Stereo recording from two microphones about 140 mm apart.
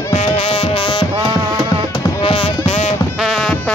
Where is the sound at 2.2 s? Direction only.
40° left (ahead or behind).